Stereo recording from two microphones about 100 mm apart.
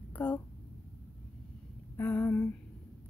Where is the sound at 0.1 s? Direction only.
15° left (ahead or behind).